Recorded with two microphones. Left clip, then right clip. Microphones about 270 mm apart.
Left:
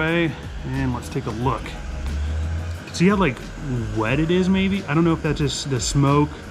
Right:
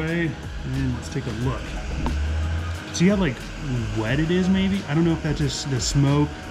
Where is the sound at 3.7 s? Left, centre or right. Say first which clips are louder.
Left 3 dB; centre.